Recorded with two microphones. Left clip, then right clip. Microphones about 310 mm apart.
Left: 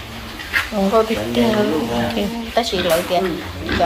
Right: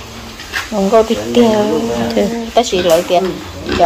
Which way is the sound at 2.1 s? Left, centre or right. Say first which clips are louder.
Right 7 dB; right.